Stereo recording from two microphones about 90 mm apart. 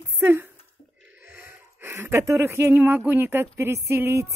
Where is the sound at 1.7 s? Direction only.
30° right (ahead or behind).